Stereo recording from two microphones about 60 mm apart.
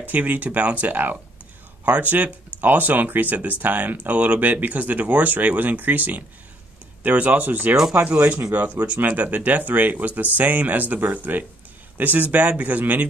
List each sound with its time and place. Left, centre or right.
0.1 s speech: right